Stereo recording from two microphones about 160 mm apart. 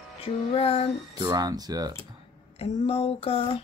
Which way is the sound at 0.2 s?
40° left (ahead or behind).